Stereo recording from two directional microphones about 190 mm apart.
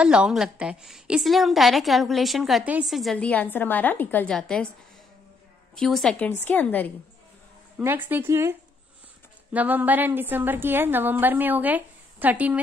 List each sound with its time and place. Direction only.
0.0 s a woman's voice: 5° right (ahead or behind)
5.8 s a woman's voice: centre (ahead or behind)
7.8 s a woman's voice: 10° right (ahead or behind)